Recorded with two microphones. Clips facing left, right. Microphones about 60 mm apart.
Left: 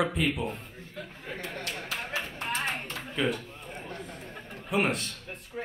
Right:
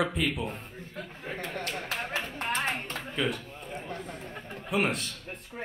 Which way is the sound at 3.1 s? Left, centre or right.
Centre.